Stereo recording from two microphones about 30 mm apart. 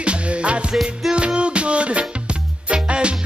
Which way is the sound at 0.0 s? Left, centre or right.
Right.